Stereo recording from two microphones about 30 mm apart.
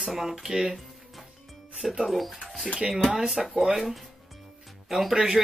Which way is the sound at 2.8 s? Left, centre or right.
Right.